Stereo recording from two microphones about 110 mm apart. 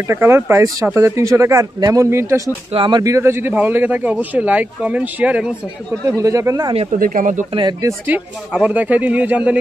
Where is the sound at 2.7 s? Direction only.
45° right (ahead or behind).